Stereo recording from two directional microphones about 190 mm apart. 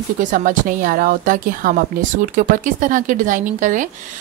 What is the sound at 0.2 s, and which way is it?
A woman's voice, 45° right (ahead or behind).